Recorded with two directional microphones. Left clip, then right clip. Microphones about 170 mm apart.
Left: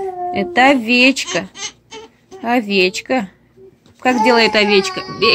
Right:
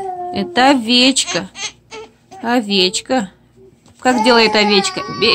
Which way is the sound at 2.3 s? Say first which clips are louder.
Even; 10° right (ahead or behind).